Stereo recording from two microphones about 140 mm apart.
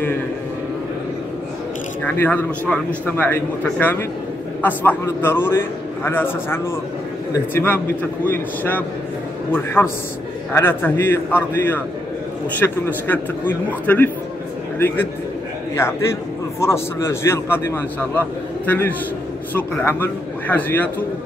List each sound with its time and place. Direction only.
2.0 s a man's voice: 10° left (ahead or behind)
15.7 s a man's voice: 20° left (ahead or behind)